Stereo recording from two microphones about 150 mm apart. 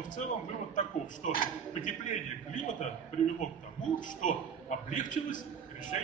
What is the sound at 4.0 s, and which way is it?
A man's voice, 60° left (ahead or behind).